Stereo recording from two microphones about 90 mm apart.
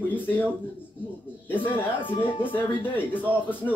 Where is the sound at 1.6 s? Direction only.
70° left (ahead or behind).